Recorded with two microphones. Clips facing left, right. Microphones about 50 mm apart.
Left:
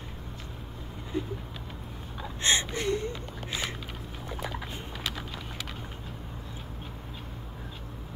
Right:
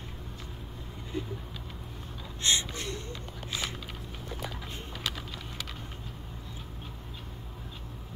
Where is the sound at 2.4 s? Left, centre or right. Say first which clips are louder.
Left 4 dB; left.